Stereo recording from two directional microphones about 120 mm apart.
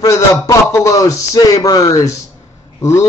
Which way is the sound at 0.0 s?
25° left (ahead or behind).